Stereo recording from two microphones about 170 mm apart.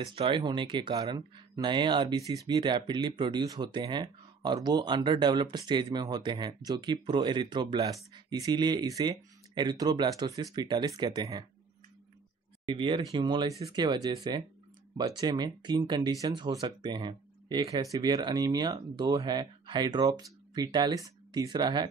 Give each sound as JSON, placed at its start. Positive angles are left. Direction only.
{"t": 0.1, "sound": "speech", "side_deg": -35}
{"t": 12.6, "sound": "speech", "side_deg": -30}